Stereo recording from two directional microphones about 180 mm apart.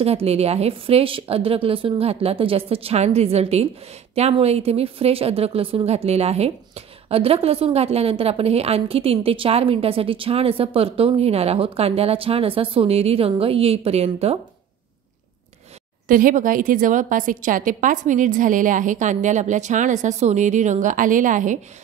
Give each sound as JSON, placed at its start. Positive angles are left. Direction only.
{"t": 0.0, "sound": "a woman's voice", "side_deg": -35}
{"t": 16.1, "sound": "a woman's voice", "side_deg": -50}